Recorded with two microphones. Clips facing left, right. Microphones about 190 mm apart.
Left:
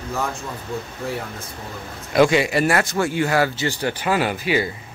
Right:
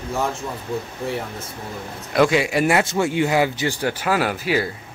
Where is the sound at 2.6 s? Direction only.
20° right (ahead or behind).